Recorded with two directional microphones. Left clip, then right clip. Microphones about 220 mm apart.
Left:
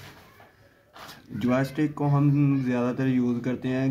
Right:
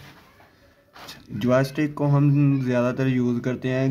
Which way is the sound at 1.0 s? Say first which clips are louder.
Right 3 dB; 50° right (ahead or behind).